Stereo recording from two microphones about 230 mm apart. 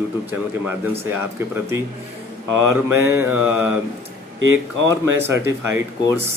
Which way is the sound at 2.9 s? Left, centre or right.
Centre.